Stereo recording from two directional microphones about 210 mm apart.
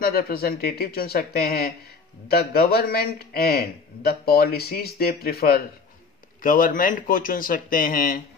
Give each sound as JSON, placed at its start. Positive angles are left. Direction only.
{"t": 0.0, "sound": "a man's voice", "side_deg": 45}